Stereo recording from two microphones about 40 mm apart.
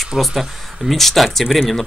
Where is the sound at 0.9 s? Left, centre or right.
Centre.